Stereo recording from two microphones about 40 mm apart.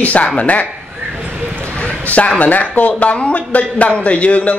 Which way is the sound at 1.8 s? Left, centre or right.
Left.